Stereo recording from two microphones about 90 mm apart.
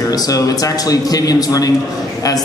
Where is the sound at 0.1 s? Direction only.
45° left (ahead or behind).